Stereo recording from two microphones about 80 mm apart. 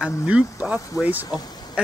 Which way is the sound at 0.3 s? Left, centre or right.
Centre.